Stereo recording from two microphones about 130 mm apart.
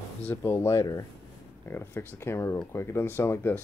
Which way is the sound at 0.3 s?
15° left (ahead or behind).